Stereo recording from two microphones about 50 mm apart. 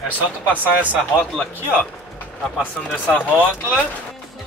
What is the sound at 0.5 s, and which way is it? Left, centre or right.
Speech, right.